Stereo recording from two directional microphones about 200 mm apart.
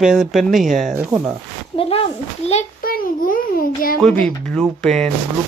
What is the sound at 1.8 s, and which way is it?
Speech, 30° left (ahead or behind).